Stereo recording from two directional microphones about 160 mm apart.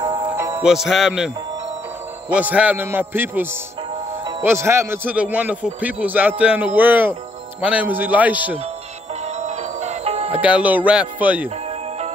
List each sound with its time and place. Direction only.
0.0 s music: 25° right (ahead or behind)
0.6 s music: 5° right (ahead or behind)
2.2 s a man's voice: 10° right (ahead or behind)
9.4 s music: 45° right (ahead or behind)
10.4 s a man's voice: 10° right (ahead or behind)